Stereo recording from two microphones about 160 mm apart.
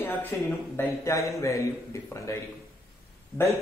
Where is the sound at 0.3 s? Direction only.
15° left (ahead or behind).